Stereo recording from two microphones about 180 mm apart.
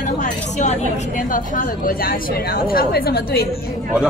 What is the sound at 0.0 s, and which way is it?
A woman's voice, 40° left (ahead or behind).